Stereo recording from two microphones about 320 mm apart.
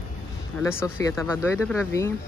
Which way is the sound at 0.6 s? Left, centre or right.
Centre.